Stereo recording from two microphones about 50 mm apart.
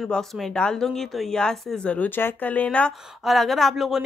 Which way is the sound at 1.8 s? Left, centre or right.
Left.